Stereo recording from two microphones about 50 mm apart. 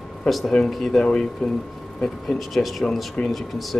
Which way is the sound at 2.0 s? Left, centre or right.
Centre.